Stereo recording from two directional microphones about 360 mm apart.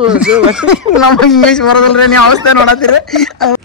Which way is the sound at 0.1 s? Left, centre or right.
Centre.